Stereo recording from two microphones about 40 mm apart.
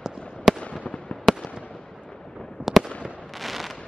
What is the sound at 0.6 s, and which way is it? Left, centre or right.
Fireworks, left.